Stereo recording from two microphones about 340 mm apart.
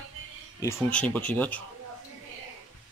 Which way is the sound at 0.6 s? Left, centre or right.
Centre.